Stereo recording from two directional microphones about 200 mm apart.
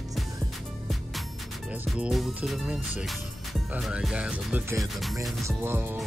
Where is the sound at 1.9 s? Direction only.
Centre (ahead or behind).